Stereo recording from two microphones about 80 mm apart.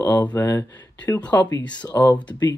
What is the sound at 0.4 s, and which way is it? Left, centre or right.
Speech, left.